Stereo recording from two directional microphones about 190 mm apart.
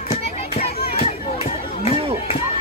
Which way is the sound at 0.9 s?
35° left (ahead or behind).